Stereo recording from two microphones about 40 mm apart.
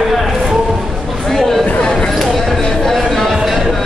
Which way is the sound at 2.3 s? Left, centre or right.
Centre.